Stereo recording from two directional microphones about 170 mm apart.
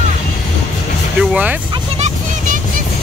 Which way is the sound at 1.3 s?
10° right (ahead or behind).